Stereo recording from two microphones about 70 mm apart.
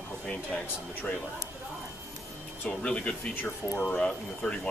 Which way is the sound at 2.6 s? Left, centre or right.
Centre.